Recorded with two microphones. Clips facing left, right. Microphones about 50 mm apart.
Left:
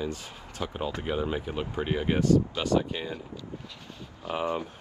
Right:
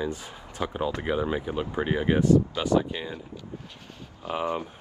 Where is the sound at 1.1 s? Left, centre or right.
Centre.